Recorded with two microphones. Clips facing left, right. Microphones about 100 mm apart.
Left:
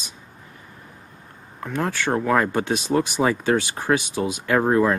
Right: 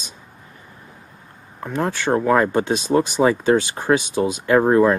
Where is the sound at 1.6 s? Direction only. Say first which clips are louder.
Right 2 dB; 15° right (ahead or behind).